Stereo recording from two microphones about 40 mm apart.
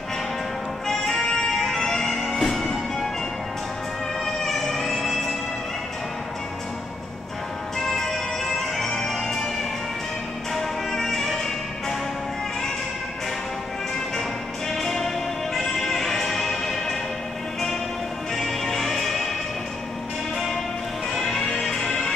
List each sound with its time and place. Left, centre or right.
0.8 s music: centre
1.5 s music: centre
4.4 s music: centre
7.8 s music: centre
10.5 s music: centre
14.7 s music: centre
18.3 s music: centre
21.1 s music: centre